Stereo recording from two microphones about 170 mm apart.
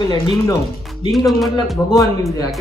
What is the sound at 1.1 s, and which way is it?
Speech, centre (ahead or behind).